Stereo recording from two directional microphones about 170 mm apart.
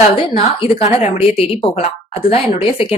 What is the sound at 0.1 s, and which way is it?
A woman's voice, 30° left (ahead or behind).